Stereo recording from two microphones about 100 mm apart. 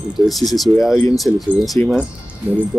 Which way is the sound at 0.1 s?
Centre (ahead or behind).